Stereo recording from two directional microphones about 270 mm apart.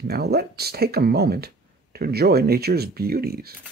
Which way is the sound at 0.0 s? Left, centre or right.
Right.